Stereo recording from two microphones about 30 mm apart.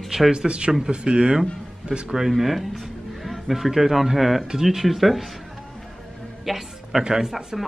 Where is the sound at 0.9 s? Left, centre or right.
Right.